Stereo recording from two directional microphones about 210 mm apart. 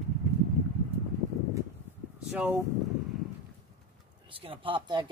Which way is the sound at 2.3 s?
10° right (ahead or behind).